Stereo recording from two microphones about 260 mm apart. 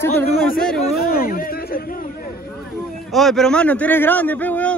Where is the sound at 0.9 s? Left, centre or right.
Left.